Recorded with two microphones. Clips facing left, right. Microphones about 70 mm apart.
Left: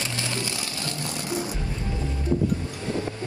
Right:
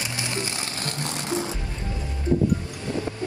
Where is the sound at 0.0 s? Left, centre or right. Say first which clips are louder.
Even; right.